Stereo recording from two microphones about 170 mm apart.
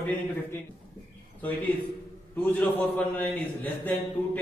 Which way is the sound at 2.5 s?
10° left (ahead or behind).